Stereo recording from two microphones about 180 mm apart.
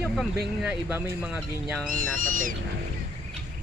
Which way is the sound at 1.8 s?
50° right (ahead or behind).